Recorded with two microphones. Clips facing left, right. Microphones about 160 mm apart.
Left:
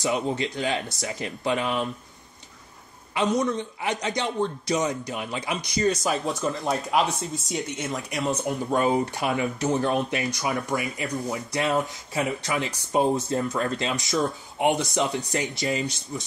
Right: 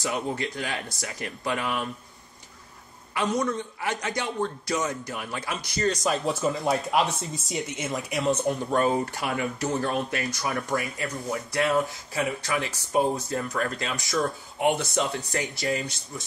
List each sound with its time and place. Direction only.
0.0 s a man's voice: 25° left (ahead or behind)
3.2 s a man's voice: 20° left (ahead or behind)
6.0 s speech: centre (ahead or behind)
8.6 s a man's voice: 15° left (ahead or behind)
11.1 s speech: centre (ahead or behind)
11.5 s a man's voice: 20° left (ahead or behind)